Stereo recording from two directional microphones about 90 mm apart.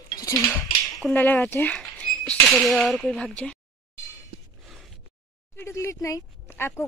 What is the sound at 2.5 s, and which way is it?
Speech, centre (ahead or behind).